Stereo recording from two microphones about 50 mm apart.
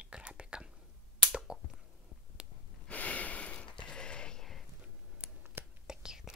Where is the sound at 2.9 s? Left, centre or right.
Left.